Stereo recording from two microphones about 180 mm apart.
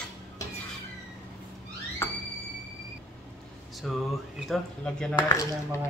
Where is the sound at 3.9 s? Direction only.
Centre (ahead or behind).